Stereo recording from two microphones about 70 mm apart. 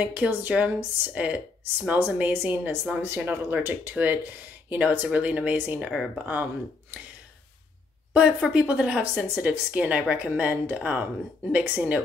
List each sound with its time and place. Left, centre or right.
0.0 s speech: right
8.1 s speech: centre